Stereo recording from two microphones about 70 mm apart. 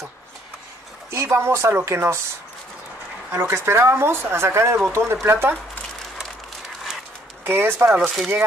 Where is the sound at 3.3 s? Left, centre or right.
Right.